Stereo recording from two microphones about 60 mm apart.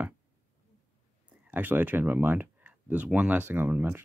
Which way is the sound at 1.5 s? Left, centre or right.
Right.